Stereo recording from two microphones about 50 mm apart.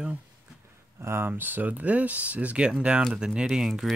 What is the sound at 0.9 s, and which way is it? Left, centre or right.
Speech, right.